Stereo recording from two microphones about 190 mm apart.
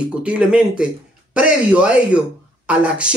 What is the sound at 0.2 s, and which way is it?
A man's voice, 5° right (ahead or behind).